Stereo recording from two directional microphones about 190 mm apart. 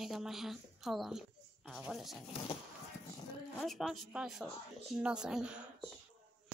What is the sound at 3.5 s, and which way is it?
A woman's voice, centre (ahead or behind).